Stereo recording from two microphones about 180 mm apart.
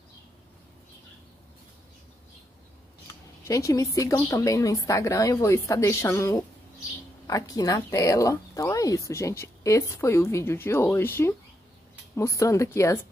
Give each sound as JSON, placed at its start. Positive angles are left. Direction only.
{"t": 3.1, "sound": "speech", "side_deg": 15}